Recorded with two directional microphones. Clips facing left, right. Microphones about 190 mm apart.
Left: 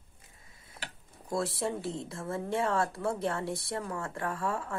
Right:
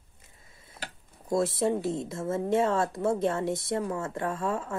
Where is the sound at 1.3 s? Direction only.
20° right (ahead or behind).